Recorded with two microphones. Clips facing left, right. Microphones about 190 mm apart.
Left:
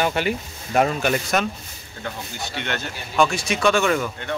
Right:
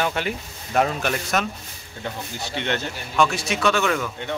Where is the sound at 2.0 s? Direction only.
25° right (ahead or behind).